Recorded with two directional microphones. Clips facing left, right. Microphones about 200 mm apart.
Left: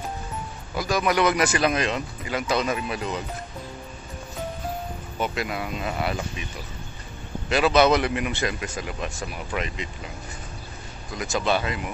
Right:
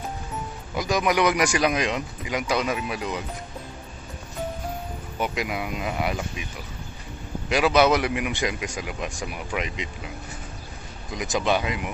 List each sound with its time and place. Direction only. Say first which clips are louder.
0.7 s speech: even; 20° right (ahead or behind)
5.2 s speech: even; 15° right (ahead or behind)
7.4 s speech: even; 10° right (ahead or behind)
11.1 s speech: right 1 dB; 15° right (ahead or behind)